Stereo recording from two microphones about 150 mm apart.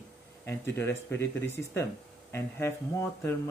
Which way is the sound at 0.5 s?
15° left (ahead or behind).